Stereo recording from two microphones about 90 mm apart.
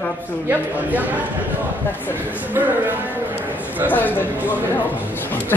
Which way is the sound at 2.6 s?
30° right (ahead or behind).